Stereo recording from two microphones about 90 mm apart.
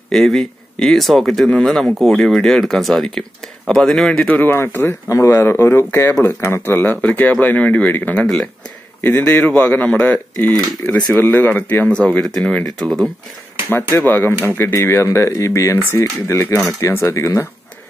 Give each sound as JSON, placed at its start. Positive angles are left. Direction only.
{"t": 0.1, "sound": "speech", "side_deg": 5}
{"t": 5.0, "sound": "speech", "side_deg": 35}
{"t": 14.0, "sound": "speech", "side_deg": 25}